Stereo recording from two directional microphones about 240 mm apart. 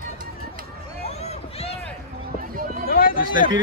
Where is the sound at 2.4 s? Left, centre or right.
Right.